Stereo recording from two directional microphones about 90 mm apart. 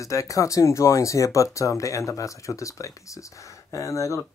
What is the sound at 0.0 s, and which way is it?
Speech, 35° left (ahead or behind).